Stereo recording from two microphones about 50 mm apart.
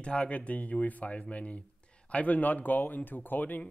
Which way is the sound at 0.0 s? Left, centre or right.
Left.